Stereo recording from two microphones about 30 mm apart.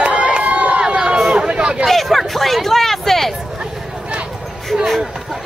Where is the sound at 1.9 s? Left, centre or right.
Centre.